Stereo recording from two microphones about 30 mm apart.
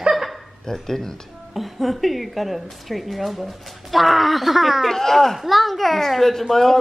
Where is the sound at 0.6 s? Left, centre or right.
Centre.